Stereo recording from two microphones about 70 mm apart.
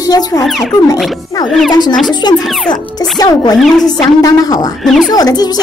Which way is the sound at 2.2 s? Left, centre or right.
Left.